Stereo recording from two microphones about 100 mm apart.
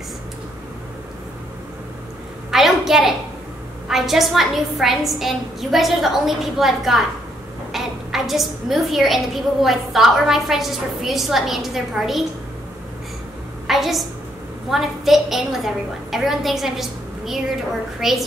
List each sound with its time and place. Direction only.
2.5 s a sound: 5° right (ahead or behind)
3.9 s a woman's voice: centre (ahead or behind)
13.7 s a woman's voice: centre (ahead or behind)